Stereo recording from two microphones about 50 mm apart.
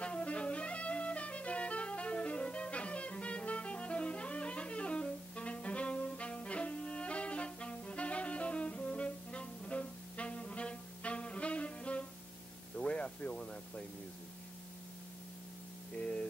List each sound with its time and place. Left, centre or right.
0.0 s music: left
12.7 s a sound: left
16.0 s static: left